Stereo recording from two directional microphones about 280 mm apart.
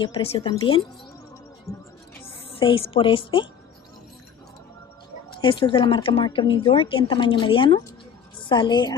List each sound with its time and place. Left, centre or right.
0.0 s a woman's voice: left
5.4 s a woman's voice: centre